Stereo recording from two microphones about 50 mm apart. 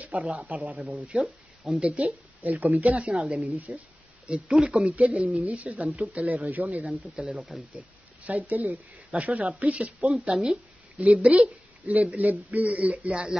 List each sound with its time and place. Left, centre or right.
0.0 s a woman's voice: right
1.1 s speech: centre
1.8 s a woman's voice: right
3.5 s speech: right
4.6 s speech: centre
4.9 s a woman's voice: right
6.9 s speech: centre
7.7 s a sound: right
8.4 s speech: right
9.1 s a woman's voice: right
10.3 s speech: centre
11.2 s speech: right
12.1 s a woman's voice: right